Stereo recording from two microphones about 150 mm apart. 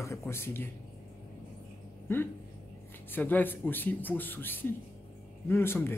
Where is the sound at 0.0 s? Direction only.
20° left (ahead or behind).